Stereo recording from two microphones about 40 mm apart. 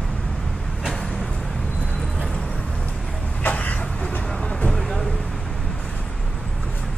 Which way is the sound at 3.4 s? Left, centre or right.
Left.